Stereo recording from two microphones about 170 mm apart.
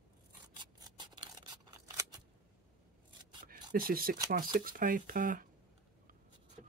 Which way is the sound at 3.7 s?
60° right (ahead or behind).